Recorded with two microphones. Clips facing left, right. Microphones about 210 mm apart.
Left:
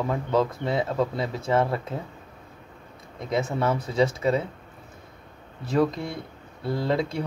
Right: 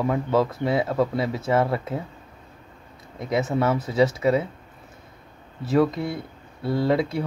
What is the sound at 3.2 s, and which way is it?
Speech, 5° right (ahead or behind).